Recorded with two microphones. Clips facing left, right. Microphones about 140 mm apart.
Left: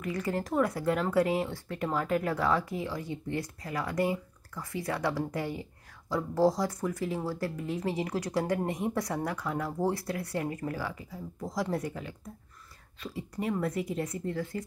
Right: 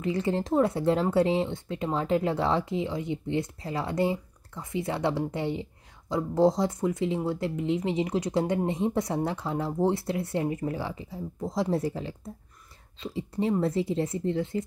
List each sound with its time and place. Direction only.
0.0 s speech: 25° right (ahead or behind)